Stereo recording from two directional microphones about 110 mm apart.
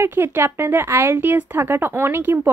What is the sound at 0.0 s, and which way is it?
Speech, 20° right (ahead or behind).